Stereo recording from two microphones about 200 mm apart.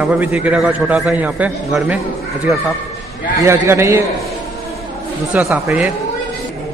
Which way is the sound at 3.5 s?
15° right (ahead or behind).